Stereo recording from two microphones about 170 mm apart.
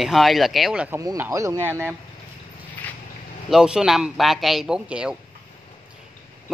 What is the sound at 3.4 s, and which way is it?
A man's voice, 5° right (ahead or behind).